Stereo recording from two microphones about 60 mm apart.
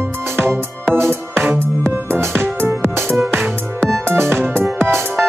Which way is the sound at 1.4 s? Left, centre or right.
Right.